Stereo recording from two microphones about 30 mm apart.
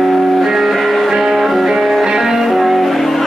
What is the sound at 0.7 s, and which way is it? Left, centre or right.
Music, centre.